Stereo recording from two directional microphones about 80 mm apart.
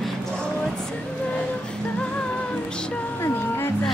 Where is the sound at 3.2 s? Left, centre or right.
Left.